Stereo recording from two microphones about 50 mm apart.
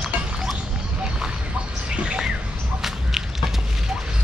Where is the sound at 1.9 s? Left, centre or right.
Centre.